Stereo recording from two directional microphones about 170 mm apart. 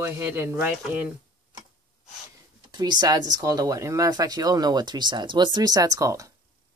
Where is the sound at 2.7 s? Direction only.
25° right (ahead or behind).